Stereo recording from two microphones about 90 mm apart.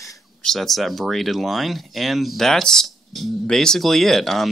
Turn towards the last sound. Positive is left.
turn(degrees=5)  # may be behind; listen again after turning